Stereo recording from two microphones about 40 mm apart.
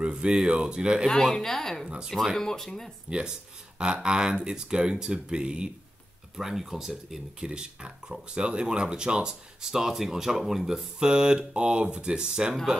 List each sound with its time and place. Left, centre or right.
0.0 s speech: right
1.0 s speech: centre
3.7 s speech: right
6.3 s speech: centre
7.3 s speech: right
11.0 s speech: right